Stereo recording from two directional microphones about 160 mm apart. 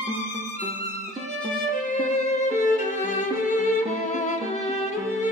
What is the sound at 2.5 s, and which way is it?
Violin, 55° left (ahead or behind).